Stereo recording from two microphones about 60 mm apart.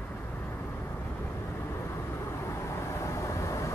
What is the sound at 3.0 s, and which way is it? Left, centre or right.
Vehicle, left.